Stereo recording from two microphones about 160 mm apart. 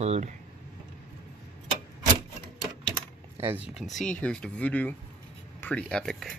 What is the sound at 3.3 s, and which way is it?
Speech, 15° right (ahead or behind).